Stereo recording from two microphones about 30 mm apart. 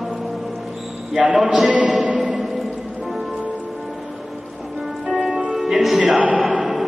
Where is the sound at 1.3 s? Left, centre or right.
Right.